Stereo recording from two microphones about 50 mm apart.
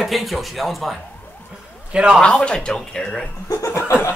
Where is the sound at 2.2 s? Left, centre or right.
Centre.